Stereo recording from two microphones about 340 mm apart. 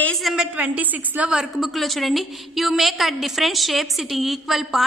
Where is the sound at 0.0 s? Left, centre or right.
Centre.